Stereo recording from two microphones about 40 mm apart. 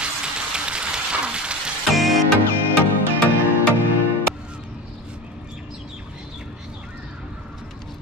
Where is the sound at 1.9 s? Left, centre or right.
Centre.